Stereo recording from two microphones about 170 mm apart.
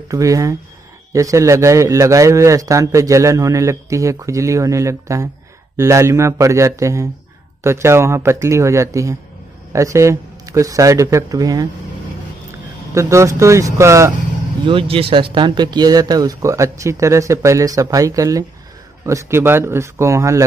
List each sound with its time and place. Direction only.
0.1 s a man's voice: 20° right (ahead or behind)
12.9 s a man's voice: 15° right (ahead or behind)
14.7 s a man's voice: 30° right (ahead or behind)